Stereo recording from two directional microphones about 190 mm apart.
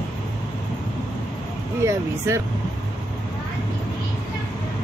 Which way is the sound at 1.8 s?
15° right (ahead or behind).